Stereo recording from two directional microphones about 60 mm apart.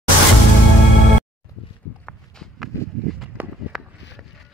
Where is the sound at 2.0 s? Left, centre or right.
Centre.